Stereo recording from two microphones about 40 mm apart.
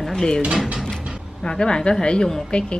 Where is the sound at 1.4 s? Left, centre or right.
Centre.